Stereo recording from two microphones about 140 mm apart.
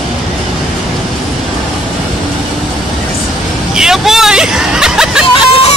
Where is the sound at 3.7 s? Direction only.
5° right (ahead or behind).